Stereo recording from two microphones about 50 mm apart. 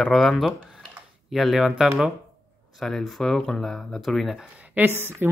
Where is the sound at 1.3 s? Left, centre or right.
Centre.